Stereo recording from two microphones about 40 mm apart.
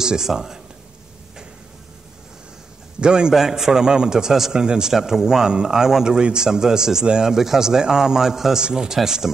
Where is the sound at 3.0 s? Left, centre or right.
Right.